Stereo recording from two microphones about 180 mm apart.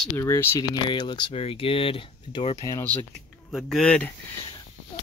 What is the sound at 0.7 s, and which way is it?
Speech, 25° left (ahead or behind).